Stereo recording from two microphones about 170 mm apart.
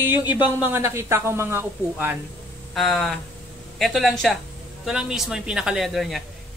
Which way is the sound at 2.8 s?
Centre (ahead or behind).